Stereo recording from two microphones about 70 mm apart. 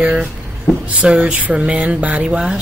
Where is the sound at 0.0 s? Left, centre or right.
Centre.